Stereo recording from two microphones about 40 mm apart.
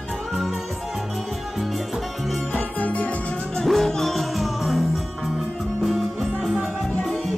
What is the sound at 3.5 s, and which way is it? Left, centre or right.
Music, centre.